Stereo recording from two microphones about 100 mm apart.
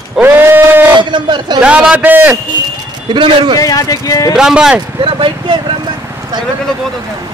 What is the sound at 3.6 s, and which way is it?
Speech, 35° left (ahead or behind).